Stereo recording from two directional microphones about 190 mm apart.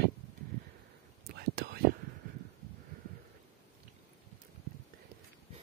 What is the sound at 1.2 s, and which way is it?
Whispering, 55° right (ahead or behind).